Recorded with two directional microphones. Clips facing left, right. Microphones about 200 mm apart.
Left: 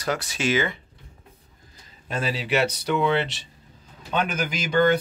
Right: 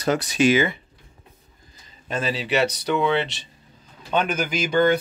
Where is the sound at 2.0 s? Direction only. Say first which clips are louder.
Right 1 dB; 10° left (ahead or behind).